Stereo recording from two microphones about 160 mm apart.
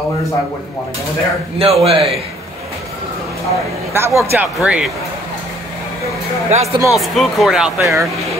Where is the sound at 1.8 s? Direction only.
35° right (ahead or behind).